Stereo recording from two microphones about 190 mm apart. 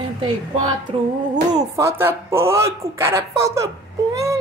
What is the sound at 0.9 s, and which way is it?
Female singing, 30° right (ahead or behind).